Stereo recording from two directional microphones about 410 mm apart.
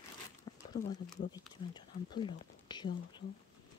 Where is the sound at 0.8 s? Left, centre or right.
Left.